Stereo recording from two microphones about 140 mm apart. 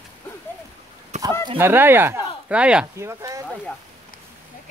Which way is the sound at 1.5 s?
15° right (ahead or behind).